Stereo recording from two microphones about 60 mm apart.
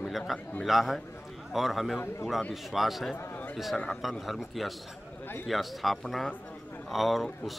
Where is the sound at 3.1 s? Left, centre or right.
Left.